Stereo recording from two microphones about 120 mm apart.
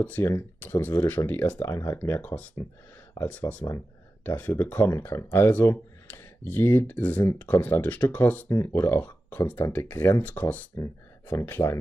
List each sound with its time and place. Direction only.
0.0 s speech: 20° left (ahead or behind)